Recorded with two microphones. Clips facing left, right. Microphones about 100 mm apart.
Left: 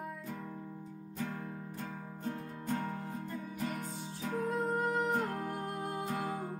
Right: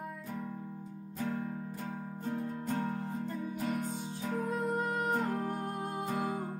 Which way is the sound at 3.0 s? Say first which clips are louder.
Right 4 dB; 20° right (ahead or behind).